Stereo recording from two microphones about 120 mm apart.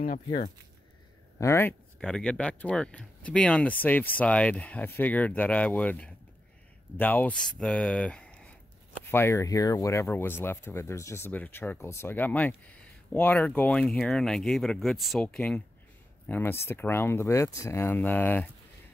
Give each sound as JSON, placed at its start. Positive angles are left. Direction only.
{"t": 1.4, "sound": "speech", "side_deg": 20}
{"t": 2.0, "sound": "speech", "side_deg": 5}
{"t": 9.1, "sound": "speech", "side_deg": 20}